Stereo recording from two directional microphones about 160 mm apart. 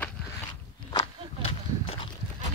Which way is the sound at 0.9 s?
35° left (ahead or behind).